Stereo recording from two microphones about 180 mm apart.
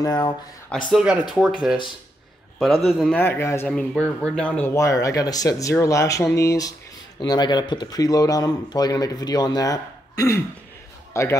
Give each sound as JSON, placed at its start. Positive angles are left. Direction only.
{"t": 0.0, "sound": "speech", "side_deg": 20}
{"t": 0.9, "sound": "speech", "side_deg": -5}
{"t": 2.9, "sound": "speech", "side_deg": 0}
{"t": 3.2, "sound": "speech", "side_deg": 15}